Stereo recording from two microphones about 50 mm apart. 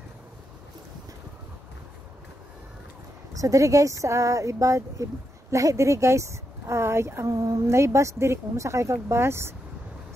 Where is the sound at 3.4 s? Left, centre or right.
Right.